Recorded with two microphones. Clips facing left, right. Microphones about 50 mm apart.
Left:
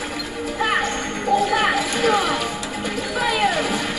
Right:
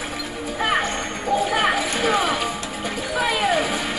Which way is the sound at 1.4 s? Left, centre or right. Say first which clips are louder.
Left 1 dB; centre.